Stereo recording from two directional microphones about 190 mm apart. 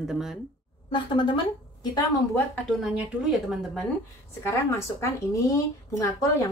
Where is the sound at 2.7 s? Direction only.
Centre (ahead or behind).